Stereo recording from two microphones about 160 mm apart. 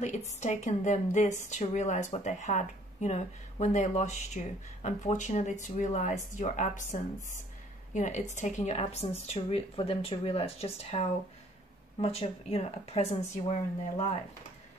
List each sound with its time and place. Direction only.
0.3 s a woman's voice: 45° left (ahead or behind)